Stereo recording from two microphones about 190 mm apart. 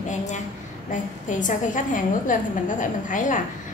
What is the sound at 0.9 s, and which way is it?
A woman's voice, 45° left (ahead or behind).